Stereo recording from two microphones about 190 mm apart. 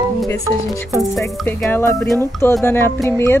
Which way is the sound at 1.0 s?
Centre (ahead or behind).